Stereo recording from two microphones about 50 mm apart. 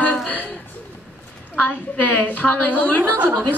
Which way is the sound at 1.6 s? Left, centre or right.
Left.